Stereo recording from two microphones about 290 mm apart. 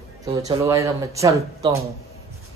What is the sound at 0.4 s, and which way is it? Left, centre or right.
Speech, centre.